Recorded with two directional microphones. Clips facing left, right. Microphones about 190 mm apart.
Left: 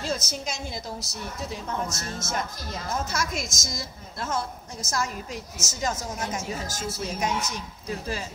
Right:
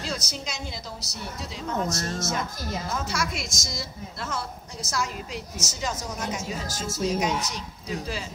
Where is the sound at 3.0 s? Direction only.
45° left (ahead or behind).